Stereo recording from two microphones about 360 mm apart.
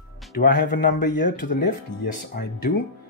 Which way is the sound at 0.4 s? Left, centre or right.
Left.